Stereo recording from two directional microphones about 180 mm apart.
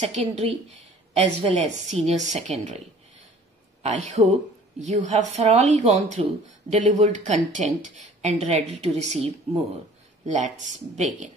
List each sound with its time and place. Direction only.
0.0 s a woman's voice: 35° right (ahead or behind)
3.8 s a woman's voice: 40° right (ahead or behind)